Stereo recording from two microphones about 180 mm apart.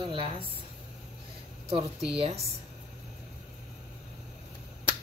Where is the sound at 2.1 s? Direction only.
35° right (ahead or behind).